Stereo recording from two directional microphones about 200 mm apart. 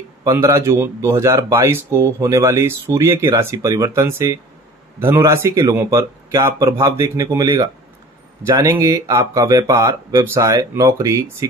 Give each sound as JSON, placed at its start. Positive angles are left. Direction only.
{"t": 0.2, "sound": "speech", "side_deg": -15}